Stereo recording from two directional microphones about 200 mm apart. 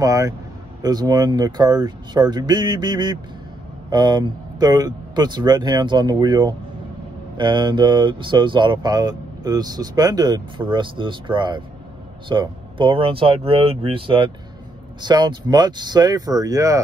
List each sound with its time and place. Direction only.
0.0 s a man's voice: 15° right (ahead or behind)